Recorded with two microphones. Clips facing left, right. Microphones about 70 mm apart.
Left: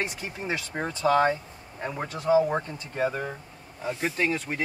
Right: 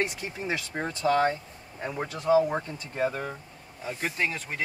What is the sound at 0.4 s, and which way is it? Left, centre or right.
Speech, centre.